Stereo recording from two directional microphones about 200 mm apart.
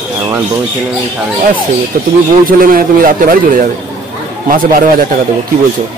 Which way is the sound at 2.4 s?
45° right (ahead or behind).